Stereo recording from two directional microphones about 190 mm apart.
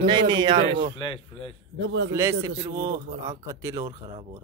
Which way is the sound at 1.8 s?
70° right (ahead or behind).